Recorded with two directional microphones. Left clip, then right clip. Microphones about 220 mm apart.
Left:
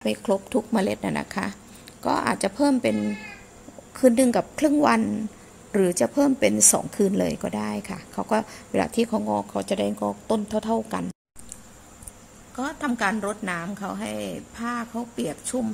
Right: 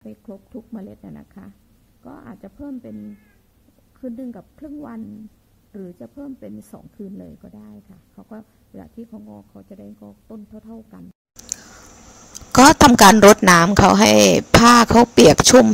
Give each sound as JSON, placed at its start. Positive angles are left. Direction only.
{"t": 0.0, "sound": "speech", "side_deg": 15}
{"t": 4.0, "sound": "speech", "side_deg": 25}
{"t": 12.5, "sound": "speech", "side_deg": -40}